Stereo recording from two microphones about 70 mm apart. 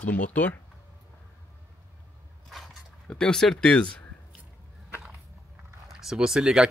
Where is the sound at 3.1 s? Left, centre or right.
Centre.